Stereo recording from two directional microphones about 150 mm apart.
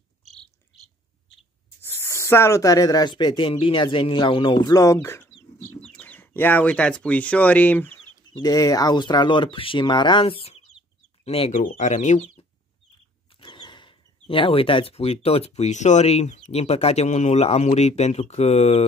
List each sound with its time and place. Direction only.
1.8 s speech: 15° left (ahead or behind)
8.3 s speech: 25° left (ahead or behind); by 12.4 s 45° left (ahead or behind)
13.4 s speech: 30° left (ahead or behind); by 18.9 s 45° left (ahead or behind)